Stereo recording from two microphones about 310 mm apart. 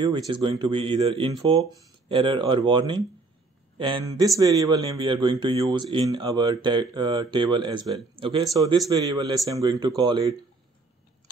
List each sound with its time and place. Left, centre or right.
0.3 s speech: centre